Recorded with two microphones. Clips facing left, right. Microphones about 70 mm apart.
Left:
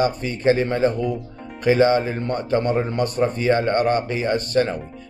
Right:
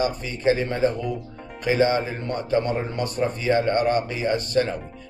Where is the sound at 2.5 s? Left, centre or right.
Left.